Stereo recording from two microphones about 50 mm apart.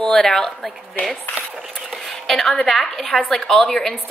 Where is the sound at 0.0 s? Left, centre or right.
Centre.